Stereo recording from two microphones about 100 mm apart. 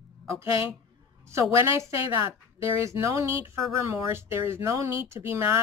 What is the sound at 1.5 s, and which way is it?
Speech, 30° right (ahead or behind).